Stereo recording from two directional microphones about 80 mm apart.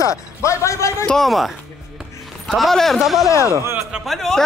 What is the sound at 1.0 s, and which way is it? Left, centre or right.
Speech, centre.